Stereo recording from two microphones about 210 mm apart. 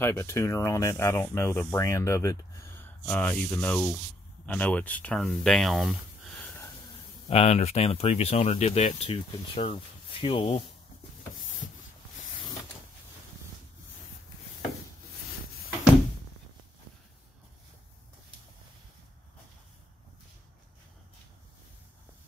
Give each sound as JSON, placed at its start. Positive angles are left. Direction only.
{"t": 0.0, "sound": "speech", "side_deg": 15}
{"t": 7.2, "sound": "speech", "side_deg": 30}